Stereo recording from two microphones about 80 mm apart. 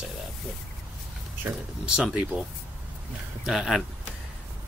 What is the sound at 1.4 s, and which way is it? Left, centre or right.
Speech, right.